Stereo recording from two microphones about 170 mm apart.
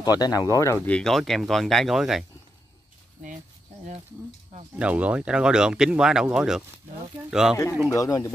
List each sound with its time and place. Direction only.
0.0 s speech: 25° left (ahead or behind)
0.9 s speech: centre (ahead or behind)
4.7 s speech: 5° right (ahead or behind)
7.9 s speech: 20° left (ahead or behind)